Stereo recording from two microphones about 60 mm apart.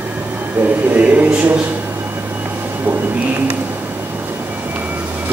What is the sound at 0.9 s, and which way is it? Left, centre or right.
Speech, right.